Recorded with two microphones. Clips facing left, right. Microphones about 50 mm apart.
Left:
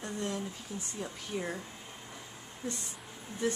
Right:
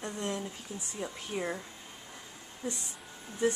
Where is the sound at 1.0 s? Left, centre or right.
Centre.